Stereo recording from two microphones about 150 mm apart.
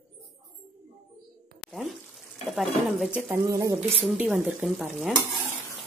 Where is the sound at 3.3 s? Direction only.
20° right (ahead or behind).